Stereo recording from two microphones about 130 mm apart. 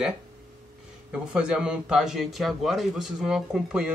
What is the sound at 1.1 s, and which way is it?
Speech, 10° right (ahead or behind).